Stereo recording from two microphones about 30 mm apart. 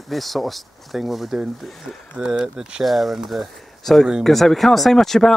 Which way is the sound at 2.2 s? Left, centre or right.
Centre.